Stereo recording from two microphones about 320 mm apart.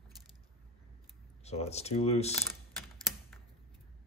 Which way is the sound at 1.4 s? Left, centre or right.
Centre.